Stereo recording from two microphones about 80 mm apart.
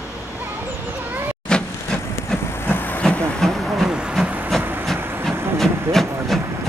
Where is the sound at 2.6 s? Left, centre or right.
Left.